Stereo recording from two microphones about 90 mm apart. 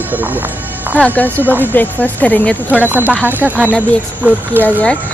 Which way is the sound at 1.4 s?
25° right (ahead or behind).